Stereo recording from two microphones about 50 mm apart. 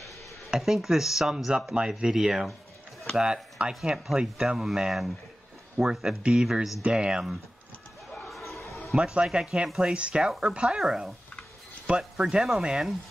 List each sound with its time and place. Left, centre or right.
0.6 s speech: centre
6.2 s speech: centre
8.3 s a sound: centre
8.9 s speech: centre
10.8 s speech: centre